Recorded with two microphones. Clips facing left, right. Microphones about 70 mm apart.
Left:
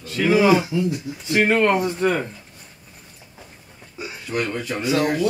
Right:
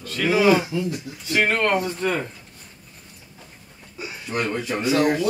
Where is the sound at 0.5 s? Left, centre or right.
Centre.